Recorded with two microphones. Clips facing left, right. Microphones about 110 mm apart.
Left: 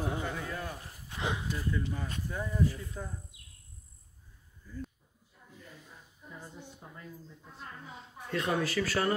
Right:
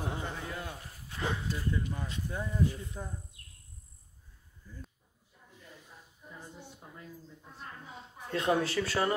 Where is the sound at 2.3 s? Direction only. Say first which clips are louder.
Even; 20° right (ahead or behind).